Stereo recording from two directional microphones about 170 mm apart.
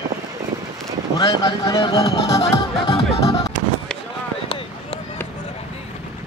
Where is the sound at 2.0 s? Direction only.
35° left (ahead or behind).